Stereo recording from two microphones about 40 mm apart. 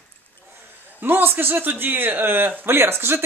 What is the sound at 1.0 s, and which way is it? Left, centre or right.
A man's voice, right.